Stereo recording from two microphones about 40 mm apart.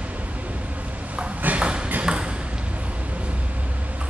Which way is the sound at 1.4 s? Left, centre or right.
Right.